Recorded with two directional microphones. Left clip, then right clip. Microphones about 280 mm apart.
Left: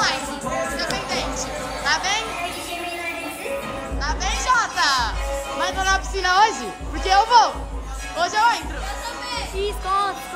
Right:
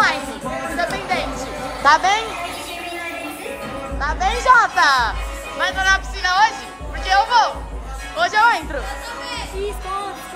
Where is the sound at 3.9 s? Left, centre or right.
Centre.